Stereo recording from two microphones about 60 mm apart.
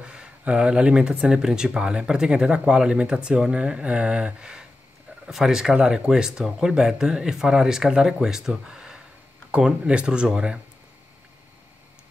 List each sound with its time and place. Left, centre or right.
0.0 s speech: centre